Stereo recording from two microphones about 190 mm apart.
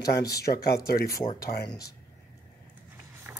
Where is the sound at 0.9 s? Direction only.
55° left (ahead or behind).